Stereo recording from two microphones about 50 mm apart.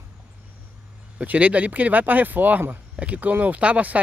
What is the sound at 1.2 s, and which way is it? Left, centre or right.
Speech, right.